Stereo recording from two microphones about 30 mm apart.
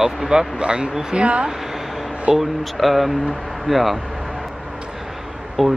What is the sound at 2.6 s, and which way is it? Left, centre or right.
Speech, centre.